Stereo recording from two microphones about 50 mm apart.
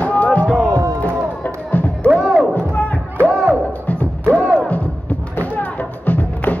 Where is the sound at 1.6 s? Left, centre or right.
Left.